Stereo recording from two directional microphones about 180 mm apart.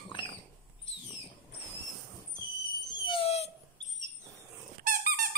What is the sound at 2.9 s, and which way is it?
Dog, 25° left (ahead or behind).